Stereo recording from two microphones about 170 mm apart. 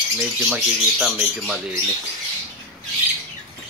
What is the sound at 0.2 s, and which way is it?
Speech, centre (ahead or behind).